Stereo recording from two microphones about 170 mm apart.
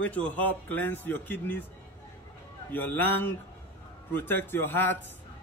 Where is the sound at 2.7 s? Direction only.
10° left (ahead or behind).